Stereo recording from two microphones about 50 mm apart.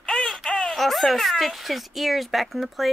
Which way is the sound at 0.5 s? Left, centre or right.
Centre.